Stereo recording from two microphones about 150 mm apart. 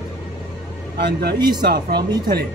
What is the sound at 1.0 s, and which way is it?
Speech, 90° right.